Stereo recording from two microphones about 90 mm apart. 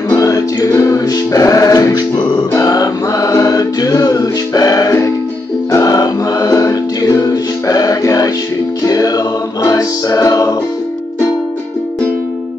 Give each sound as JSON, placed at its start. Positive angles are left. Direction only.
{"t": 0.1, "sound": "music", "side_deg": 40}